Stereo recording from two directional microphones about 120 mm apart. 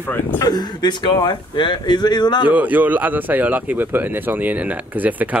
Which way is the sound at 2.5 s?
15° right (ahead or behind).